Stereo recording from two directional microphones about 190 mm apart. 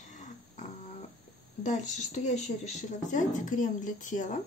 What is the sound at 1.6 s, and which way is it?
Speech, 40° left (ahead or behind).